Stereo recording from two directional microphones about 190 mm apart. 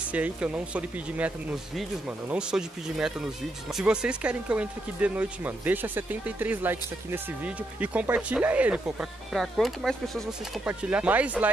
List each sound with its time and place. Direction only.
0.1 s speech: 5° right (ahead or behind)